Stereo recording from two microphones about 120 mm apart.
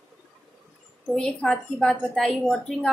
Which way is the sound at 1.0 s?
5° left (ahead or behind).